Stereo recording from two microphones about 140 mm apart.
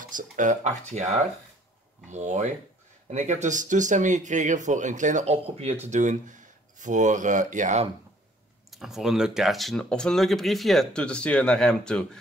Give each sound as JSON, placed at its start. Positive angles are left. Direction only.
{"t": 0.0, "sound": "speech", "side_deg": -70}
{"t": 5.9, "sound": "speech", "side_deg": -60}
{"t": 8.6, "sound": "speech", "side_deg": 0}